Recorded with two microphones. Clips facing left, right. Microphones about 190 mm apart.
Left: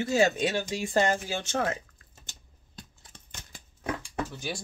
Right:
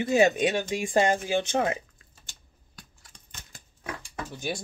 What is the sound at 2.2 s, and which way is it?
Scissors, 20° left (ahead or behind).